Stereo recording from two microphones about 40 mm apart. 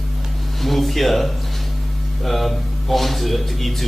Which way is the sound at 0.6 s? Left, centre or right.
Centre.